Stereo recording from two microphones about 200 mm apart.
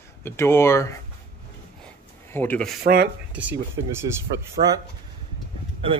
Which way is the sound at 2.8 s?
50° right (ahead or behind).